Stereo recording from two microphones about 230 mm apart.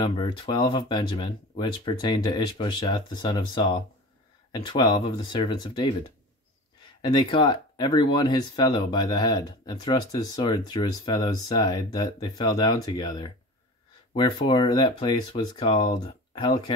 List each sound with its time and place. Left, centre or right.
0.0 s speech: centre